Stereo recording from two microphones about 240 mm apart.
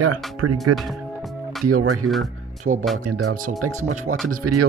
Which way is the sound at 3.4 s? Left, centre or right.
Right.